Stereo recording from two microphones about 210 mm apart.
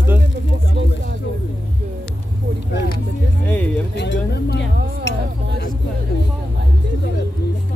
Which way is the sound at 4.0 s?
55° left (ahead or behind).